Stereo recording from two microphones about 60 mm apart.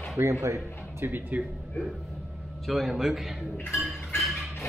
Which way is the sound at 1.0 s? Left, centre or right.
Right.